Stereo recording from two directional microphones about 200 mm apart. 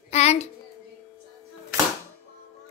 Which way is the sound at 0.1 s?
35° left (ahead or behind).